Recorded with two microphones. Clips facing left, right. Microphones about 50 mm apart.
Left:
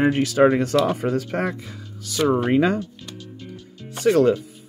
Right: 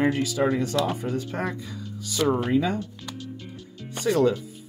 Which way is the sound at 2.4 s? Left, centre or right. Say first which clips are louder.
Left 5 dB; left.